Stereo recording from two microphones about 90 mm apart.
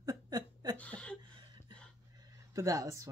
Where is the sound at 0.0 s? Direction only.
45° right (ahead or behind).